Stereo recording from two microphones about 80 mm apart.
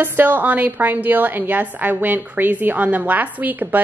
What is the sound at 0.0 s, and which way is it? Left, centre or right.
A woman's voice, right.